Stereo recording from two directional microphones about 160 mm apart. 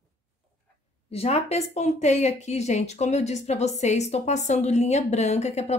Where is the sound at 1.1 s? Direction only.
40° left (ahead or behind).